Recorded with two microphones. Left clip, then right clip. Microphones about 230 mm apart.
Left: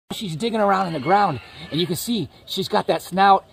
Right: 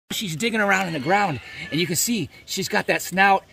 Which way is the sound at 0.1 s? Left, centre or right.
Centre.